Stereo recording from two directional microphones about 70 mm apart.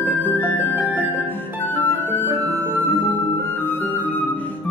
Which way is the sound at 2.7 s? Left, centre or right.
Right.